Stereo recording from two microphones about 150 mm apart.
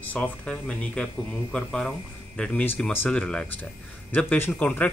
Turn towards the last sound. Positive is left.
turn(degrees=10)  # may be behind; listen again after turning